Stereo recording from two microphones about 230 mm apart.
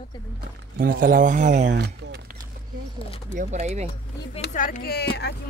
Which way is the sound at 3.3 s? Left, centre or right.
Right.